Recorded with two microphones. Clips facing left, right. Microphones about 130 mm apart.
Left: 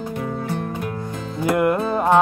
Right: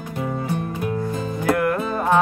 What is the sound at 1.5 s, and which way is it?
Music, 20° left (ahead or behind).